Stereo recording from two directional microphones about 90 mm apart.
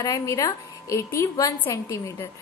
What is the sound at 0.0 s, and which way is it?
A woman's voice, 35° left (ahead or behind).